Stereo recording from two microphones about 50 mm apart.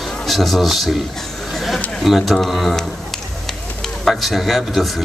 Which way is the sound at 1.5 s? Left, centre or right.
Centre.